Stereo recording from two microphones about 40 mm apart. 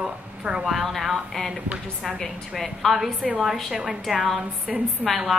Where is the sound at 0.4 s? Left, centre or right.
Centre.